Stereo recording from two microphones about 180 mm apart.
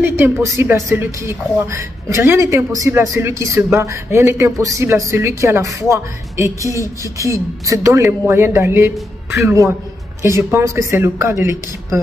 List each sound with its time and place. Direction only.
0.0 s speech: 15° right (ahead or behind)